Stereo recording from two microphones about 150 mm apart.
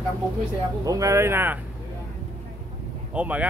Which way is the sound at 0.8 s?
20° right (ahead or behind).